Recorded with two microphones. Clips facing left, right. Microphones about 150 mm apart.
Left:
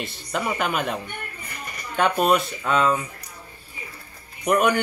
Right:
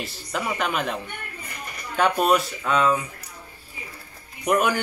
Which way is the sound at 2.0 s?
Centre (ahead or behind).